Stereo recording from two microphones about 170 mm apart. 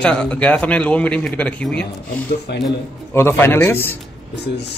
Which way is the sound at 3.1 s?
15° left (ahead or behind).